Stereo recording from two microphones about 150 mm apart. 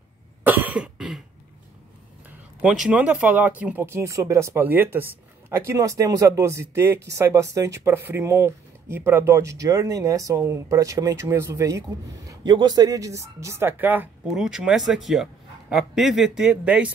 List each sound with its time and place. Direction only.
0.4 s cough: 10° right (ahead or behind)
2.6 s speech: 5° right (ahead or behind)